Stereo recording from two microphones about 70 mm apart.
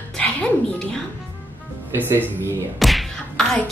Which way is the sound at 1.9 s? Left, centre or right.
Right.